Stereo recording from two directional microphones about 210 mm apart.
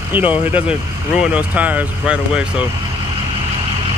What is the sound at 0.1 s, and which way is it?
Speech, 10° right (ahead or behind).